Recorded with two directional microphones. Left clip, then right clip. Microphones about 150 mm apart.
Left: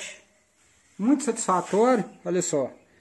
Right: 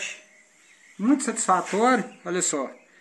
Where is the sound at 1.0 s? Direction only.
60° left (ahead or behind).